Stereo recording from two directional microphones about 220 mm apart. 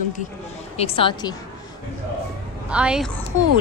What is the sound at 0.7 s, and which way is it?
Speech, 25° left (ahead or behind).